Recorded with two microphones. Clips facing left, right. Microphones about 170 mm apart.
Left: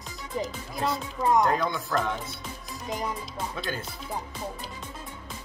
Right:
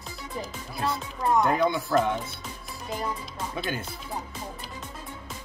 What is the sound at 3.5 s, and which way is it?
Speech, 15° right (ahead or behind).